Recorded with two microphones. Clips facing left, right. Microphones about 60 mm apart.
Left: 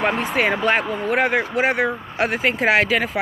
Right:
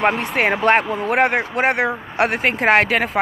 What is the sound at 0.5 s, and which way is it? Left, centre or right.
Speech, right.